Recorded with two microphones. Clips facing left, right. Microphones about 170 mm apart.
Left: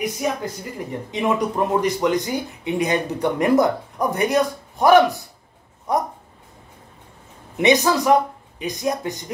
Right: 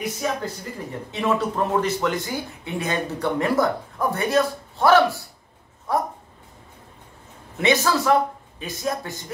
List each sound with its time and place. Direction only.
0.0 s speech: 15° left (ahead or behind)
5.9 s a sound: 20° left (ahead or behind)
7.5 s speech: 15° left (ahead or behind)